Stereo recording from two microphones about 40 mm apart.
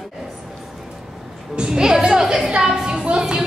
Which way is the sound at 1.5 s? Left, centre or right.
Centre.